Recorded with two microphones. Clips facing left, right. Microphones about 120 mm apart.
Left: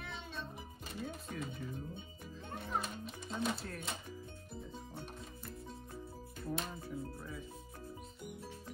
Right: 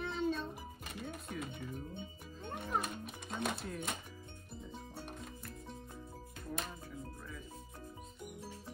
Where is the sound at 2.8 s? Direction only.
55° right (ahead or behind).